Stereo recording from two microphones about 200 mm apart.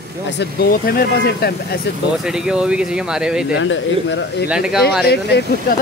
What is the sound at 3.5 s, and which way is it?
Speech, 70° left (ahead or behind).